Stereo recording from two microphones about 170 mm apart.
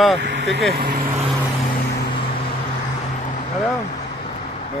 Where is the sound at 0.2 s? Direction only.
90° right.